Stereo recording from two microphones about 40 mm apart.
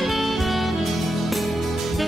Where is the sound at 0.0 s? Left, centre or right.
Centre.